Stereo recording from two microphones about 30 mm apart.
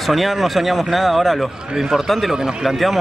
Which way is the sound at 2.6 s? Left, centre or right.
Centre.